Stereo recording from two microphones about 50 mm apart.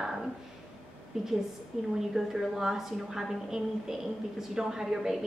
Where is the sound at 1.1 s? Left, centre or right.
Centre.